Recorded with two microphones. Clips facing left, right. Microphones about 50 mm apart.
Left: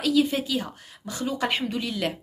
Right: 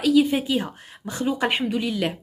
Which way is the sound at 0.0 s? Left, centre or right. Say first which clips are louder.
Right 4 dB; centre.